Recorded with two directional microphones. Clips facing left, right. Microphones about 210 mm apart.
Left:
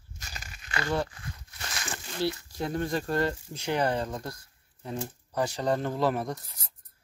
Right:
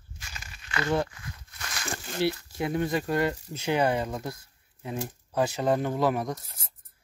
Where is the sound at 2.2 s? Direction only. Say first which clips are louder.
Right 3 dB; 65° right (ahead or behind).